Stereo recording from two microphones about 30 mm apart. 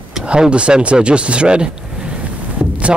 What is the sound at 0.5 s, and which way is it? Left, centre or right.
Speech, right.